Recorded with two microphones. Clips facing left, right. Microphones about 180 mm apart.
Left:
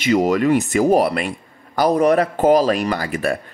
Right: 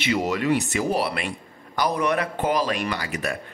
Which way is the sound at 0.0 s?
45° left (ahead or behind).